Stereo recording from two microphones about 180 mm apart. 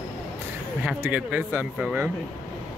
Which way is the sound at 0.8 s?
10° right (ahead or behind).